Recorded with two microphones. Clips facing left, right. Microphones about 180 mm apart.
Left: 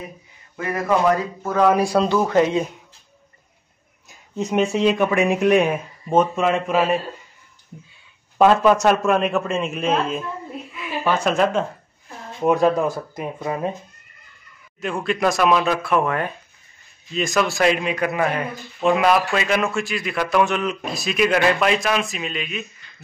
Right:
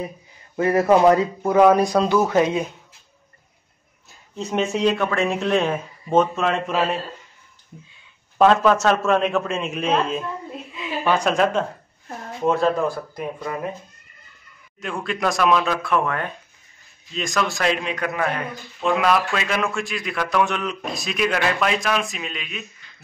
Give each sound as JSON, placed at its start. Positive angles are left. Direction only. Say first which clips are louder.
{"t": 0.6, "sound": "a man's voice", "louder": "right 5 dB", "side_deg": -30}
{"t": 1.7, "sound": "a man's voice", "louder": "right 1 dB", "side_deg": 5}
{"t": 4.4, "sound": "a man's voice", "louder": "left 2 dB", "side_deg": 15}
{"t": 8.4, "sound": "a man's voice", "louder": "left 1 dB", "side_deg": 10}
{"t": 12.4, "sound": "speech", "louder": "left 2 dB", "side_deg": 15}
{"t": 14.8, "sound": "a man's voice", "louder": "left 4 dB", "side_deg": 5}